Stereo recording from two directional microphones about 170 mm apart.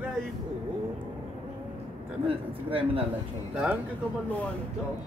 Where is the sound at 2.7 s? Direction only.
35° right (ahead or behind).